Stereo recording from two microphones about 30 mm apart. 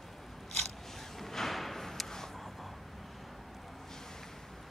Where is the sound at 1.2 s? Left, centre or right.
Centre.